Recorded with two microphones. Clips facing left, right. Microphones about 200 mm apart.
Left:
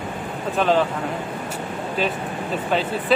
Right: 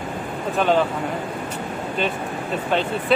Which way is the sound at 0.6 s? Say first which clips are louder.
Even; centre (ahead or behind).